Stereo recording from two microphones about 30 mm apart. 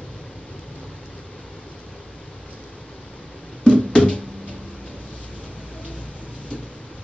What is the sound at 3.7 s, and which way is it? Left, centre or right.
Music, left.